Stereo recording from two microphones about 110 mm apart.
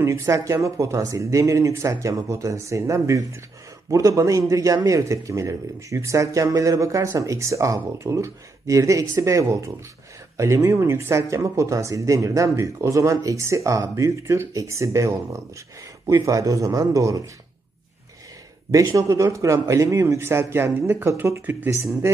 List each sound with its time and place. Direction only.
0.0 s a man's voice: 25° right (ahead or behind)
18.9 s a man's voice: 25° right (ahead or behind)